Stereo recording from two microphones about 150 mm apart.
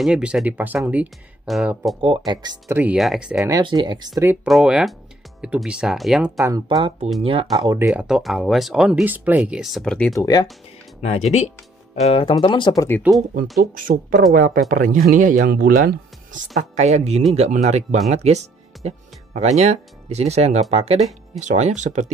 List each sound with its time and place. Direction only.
0.0 s speech: 5° right (ahead or behind)
2.0 s speech: 30° right (ahead or behind)
2.7 s speech: 10° right (ahead or behind)
3.4 s speech: 25° right (ahead or behind)
4.5 s speech: 5° right (ahead or behind)
6.4 s speech: 25° right (ahead or behind)
7.2 s speech: 40° right (ahead or behind)
7.5 s speech: 25° right (ahead or behind)
7.9 s speech: 5° right (ahead or behind)
10.1 s speech: 25° left (ahead or behind)
11.0 s speech: 45° left (ahead or behind); by 12.8 s 30° left (ahead or behind)
13.7 s speech: 70° right (ahead or behind); by 22.1 s 50° right (ahead or behind)